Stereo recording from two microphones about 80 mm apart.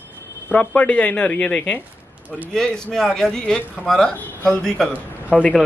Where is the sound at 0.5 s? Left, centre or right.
Centre.